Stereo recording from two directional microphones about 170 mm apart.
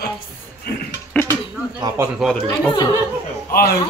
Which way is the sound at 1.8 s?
25° right (ahead or behind).